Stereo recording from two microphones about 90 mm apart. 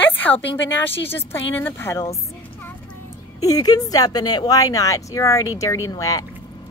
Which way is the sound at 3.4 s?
45° left (ahead or behind).